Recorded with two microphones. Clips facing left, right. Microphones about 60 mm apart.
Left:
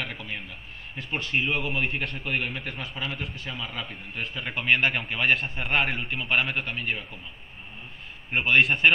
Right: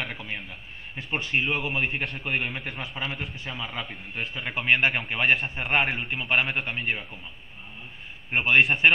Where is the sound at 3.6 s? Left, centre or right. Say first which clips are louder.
Right 3 dB; right.